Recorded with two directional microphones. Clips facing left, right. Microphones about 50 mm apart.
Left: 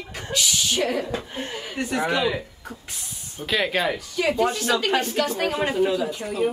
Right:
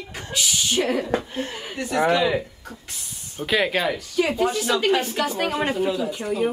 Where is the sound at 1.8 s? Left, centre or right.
Left.